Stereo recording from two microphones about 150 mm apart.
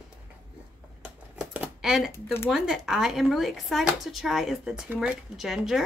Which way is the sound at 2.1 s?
15° left (ahead or behind).